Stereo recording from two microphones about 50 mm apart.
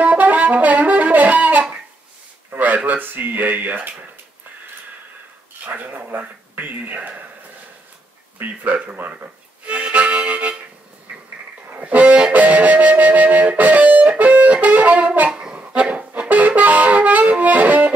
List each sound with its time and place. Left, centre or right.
0.0 s music: right
2.5 s speech: right
5.7 s speech: right
8.4 s speech: right
8.9 s harmonica: right
11.1 s a sound: right
11.8 s music: right
15.7 s saxophone: right